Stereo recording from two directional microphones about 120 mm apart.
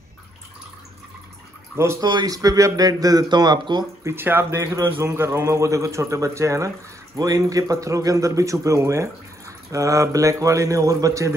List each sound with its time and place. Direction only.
1.8 s speech: 20° right (ahead or behind)
2.0 s speech: 30° right (ahead or behind)
4.0 s speech: 20° right (ahead or behind)